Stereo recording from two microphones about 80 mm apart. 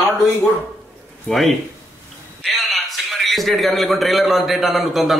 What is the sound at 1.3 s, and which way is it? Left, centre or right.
Speech, centre.